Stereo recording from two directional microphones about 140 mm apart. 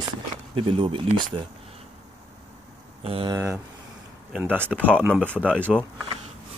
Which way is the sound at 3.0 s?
45° right (ahead or behind).